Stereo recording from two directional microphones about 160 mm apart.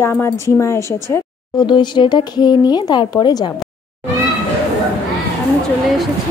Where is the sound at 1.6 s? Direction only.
30° left (ahead or behind).